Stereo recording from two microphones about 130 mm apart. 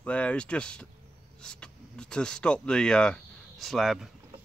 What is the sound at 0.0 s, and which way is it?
Speech, 10° left (ahead or behind).